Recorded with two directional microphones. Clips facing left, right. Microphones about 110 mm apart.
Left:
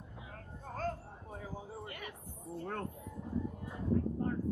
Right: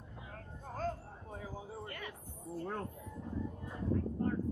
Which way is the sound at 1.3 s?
Centre (ahead or behind).